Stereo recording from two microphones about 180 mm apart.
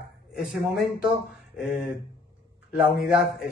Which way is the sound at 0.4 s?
Centre (ahead or behind).